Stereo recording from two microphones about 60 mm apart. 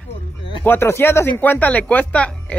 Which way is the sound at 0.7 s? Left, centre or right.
Left.